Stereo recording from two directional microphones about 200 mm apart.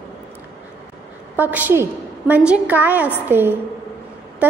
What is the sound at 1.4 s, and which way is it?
A woman's voice, 10° right (ahead or behind).